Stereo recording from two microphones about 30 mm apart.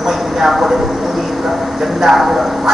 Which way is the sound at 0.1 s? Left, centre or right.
Centre.